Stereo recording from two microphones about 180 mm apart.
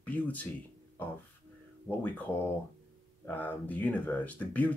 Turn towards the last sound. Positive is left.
turn(degrees=10)  # may be behind; listen again after turning